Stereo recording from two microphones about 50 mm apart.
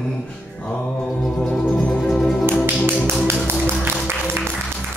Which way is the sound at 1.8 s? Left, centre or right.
Left.